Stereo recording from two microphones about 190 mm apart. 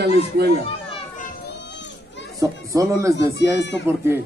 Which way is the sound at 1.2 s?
60° left (ahead or behind).